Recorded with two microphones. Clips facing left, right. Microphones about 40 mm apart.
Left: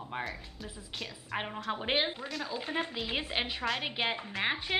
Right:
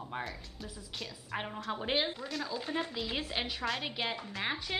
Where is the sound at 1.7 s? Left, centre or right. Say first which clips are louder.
Left 1 dB; left.